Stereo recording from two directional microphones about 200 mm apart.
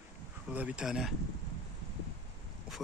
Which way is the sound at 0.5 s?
5° right (ahead or behind).